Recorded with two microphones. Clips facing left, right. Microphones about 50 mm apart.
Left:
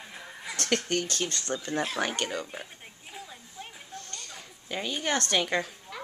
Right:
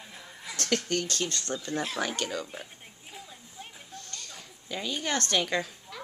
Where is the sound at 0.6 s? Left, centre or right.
Left.